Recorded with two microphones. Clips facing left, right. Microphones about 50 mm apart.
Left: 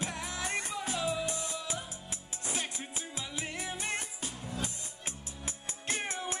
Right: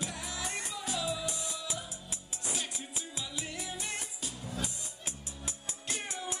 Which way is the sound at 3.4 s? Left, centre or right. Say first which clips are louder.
Left 4 dB; left.